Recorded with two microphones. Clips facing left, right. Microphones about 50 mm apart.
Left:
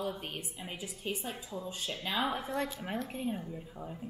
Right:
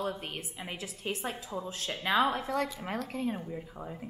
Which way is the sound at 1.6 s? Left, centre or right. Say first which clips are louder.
Right 2 dB; right.